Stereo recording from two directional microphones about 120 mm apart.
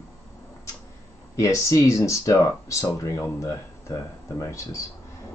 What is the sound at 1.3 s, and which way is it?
Speech, 25° left (ahead or behind).